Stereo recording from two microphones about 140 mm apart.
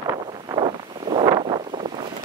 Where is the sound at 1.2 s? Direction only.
25° right (ahead or behind).